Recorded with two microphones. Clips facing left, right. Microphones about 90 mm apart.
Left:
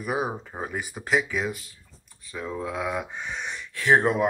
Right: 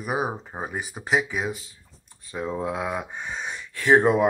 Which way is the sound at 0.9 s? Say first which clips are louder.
Right 1 dB; 10° right (ahead or behind).